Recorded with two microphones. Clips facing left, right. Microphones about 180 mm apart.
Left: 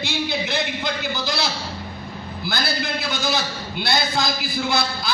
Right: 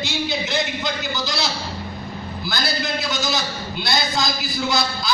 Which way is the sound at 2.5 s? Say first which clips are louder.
Even; 60° left (ahead or behind).